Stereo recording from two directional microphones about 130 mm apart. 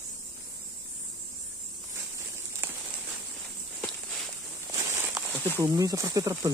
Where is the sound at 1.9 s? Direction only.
20° right (ahead or behind).